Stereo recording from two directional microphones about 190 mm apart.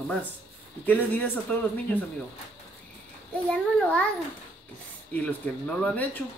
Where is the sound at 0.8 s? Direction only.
10° left (ahead or behind).